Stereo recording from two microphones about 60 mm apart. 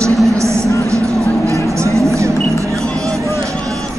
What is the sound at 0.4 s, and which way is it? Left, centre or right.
Vehicle, right.